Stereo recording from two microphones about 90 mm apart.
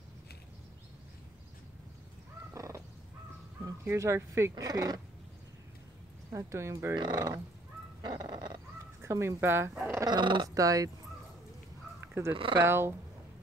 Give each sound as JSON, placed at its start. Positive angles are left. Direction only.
{"t": 2.5, "sound": "crow", "side_deg": -40}
{"t": 3.8, "sound": "speech", "side_deg": -30}
{"t": 6.3, "sound": "speech", "side_deg": -35}
{"t": 7.0, "sound": "speech", "side_deg": -50}
{"t": 8.0, "sound": "dog", "side_deg": -55}
{"t": 9.0, "sound": "speech", "side_deg": -30}
{"t": 10.0, "sound": "speech", "side_deg": -60}
{"t": 10.4, "sound": "speech", "side_deg": -40}
{"t": 12.1, "sound": "speech", "side_deg": -25}